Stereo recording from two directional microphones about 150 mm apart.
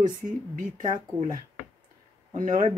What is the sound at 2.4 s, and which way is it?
Speech, 60° right (ahead or behind).